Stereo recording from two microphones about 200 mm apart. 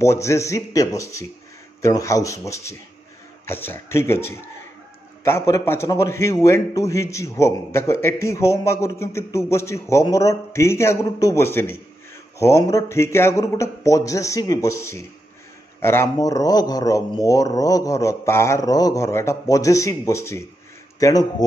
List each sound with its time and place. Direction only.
0.0 s a man's voice: 15° left (ahead or behind)
5.5 s a man's voice: 15° left (ahead or behind)